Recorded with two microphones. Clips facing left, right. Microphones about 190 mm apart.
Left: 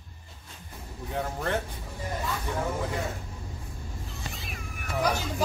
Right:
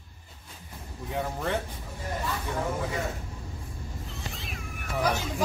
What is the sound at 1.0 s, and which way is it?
Speech, centre (ahead or behind).